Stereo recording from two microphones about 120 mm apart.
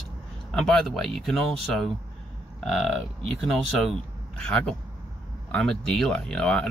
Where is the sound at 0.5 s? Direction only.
5° left (ahead or behind).